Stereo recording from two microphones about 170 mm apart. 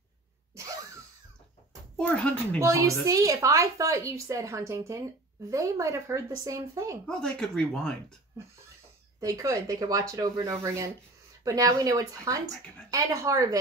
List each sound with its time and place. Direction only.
2.0 s speech: 5° left (ahead or behind)
2.6 s a woman's voice: 15° right (ahead or behind)
7.1 s speech: 5° left (ahead or behind)
9.2 s speech: 20° right (ahead or behind)